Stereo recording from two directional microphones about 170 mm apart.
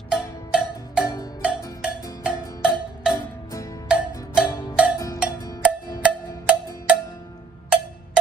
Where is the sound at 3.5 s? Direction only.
20° left (ahead or behind).